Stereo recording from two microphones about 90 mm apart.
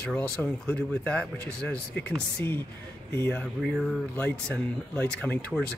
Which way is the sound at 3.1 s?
25° left (ahead or behind).